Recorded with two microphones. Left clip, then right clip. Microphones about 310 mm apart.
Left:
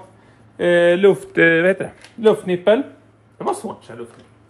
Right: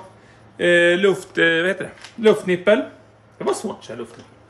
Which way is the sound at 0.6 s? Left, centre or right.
Centre.